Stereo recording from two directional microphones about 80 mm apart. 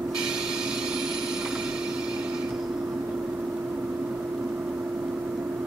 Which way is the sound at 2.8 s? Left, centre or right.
Centre.